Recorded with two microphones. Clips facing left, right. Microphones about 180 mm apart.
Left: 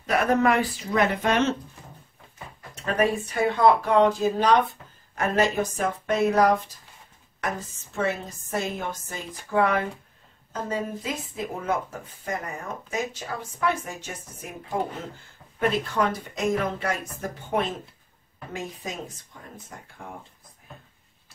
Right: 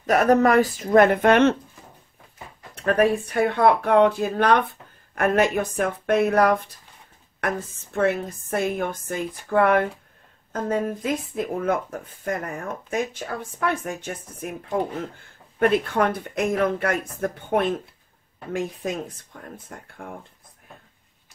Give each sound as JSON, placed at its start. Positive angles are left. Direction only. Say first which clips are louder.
{"t": 0.0, "sound": "speech", "louder": "right 4 dB", "side_deg": -45}
{"t": 2.7, "sound": "speech", "louder": "right 4 dB", "side_deg": -55}
{"t": 15.6, "sound": "speech", "louder": "right 4 dB", "side_deg": -55}